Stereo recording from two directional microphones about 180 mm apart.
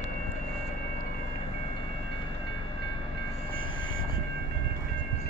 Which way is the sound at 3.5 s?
25° left (ahead or behind).